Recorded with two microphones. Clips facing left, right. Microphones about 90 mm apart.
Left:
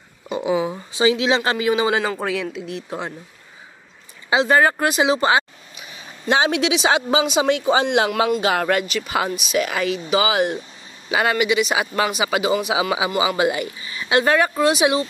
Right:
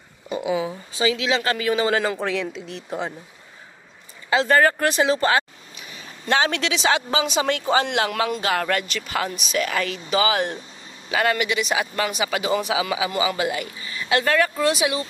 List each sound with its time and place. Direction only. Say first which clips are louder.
0.3 s speech: left 3 dB; 25° left (ahead or behind); by 3.1 s centre (ahead or behind)
4.3 s speech: left 1 dB; 10° left (ahead or behind)
8.1 s speech: left 4 dB; 5° left (ahead or behind); by 15.0 s 20° left (ahead or behind)